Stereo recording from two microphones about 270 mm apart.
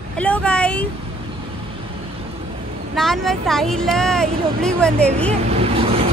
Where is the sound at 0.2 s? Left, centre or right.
Centre.